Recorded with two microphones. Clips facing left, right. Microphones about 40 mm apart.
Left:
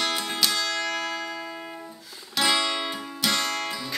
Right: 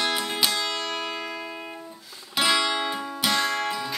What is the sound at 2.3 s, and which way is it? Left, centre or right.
Music, centre.